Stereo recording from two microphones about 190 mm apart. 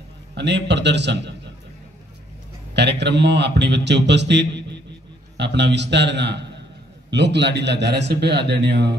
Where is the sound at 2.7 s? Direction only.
65° right (ahead or behind).